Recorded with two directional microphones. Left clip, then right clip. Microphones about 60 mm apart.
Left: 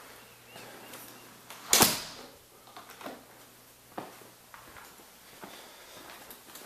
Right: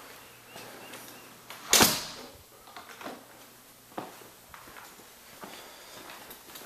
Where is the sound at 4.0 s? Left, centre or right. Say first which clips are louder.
Right 2 dB; centre.